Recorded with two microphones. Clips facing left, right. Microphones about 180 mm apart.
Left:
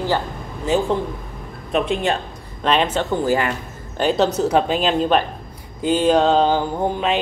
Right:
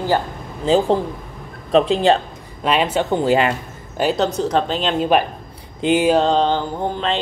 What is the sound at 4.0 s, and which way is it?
Speech, 5° right (ahead or behind).